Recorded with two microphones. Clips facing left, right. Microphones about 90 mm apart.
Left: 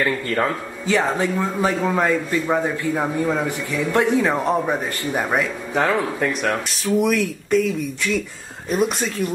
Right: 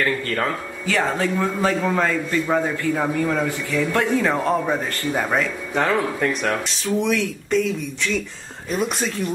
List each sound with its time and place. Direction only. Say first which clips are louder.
0.0 s a man's voice: left 1 dB; 15° left (ahead or behind)
5.9 s speech: even; centre (ahead or behind)